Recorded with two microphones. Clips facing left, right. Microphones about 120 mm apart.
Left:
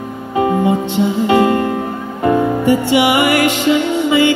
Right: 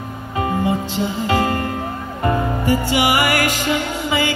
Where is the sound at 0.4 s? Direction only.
20° left (ahead or behind).